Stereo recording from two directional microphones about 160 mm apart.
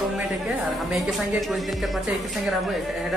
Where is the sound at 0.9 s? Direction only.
Centre (ahead or behind).